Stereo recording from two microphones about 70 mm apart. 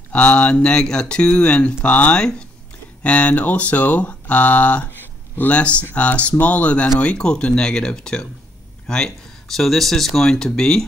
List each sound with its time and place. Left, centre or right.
0.1 s speech: centre